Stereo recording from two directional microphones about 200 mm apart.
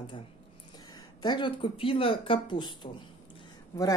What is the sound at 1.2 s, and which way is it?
Speech, 25° left (ahead or behind).